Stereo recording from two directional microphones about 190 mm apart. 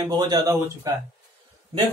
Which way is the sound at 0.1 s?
20° right (ahead or behind).